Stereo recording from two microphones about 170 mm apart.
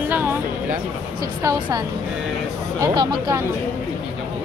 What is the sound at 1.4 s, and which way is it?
Speech, 20° right (ahead or behind).